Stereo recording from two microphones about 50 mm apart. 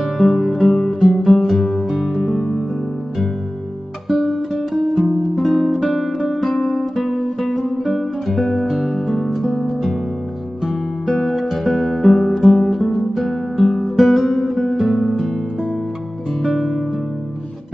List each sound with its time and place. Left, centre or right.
0.0 s music: centre
4.1 s music: centre
5.9 s guitar: centre
6.4 s music: centre
7.6 s music: centre
7.9 s music: centre
11.1 s music: centre
16.4 s music: centre